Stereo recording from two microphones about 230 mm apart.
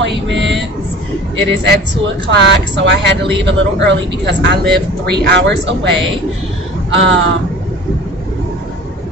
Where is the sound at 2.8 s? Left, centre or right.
Right.